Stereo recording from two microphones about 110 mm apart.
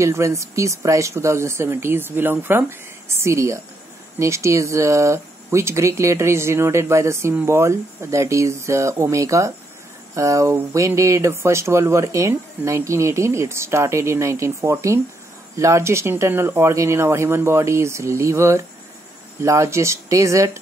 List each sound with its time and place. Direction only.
0.0 s speech: 25° right (ahead or behind)